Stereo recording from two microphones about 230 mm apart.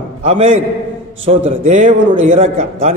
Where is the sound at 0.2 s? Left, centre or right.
Right.